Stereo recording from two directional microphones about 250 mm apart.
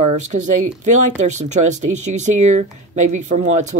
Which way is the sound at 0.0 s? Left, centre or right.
Right.